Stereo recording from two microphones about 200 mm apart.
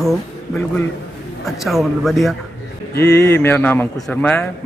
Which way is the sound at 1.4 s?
Centre (ahead or behind).